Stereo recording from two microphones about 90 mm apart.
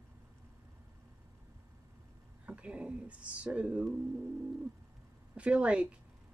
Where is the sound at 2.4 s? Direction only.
15° right (ahead or behind).